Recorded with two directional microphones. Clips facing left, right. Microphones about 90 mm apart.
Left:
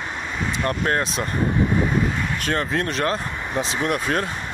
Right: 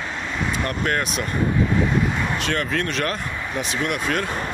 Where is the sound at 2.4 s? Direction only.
30° left (ahead or behind).